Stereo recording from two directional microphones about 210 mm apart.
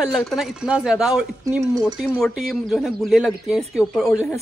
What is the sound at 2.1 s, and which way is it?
Speech, centre (ahead or behind).